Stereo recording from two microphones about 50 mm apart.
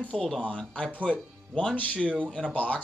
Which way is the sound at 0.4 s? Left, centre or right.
Left.